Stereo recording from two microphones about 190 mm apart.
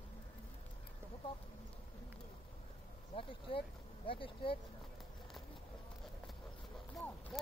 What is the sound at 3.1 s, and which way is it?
Speech, 30° left (ahead or behind).